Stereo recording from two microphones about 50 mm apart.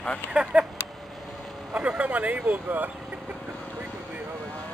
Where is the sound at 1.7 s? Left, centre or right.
Right.